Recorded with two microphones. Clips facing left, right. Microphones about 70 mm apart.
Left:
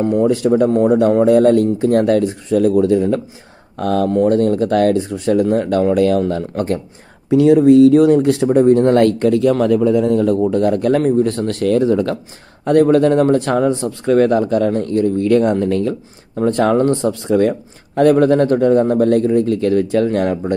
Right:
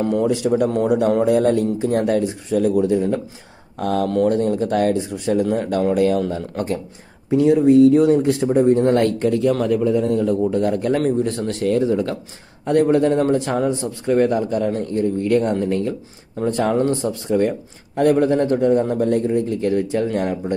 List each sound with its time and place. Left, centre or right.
0.6 s speech: left
1.2 s speech: left
3.7 s speech: left
7.2 s speech: left
8.1 s speech: left
9.7 s speech: left
11.6 s speech: left
12.6 s speech: left
16.3 s speech: left